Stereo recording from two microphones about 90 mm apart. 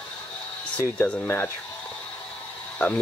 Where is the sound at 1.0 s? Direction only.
15° left (ahead or behind).